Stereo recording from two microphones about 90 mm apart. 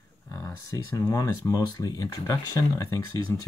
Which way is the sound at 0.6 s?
40° left (ahead or behind).